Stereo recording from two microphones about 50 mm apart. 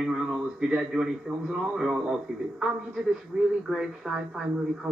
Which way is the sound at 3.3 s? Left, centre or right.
Centre.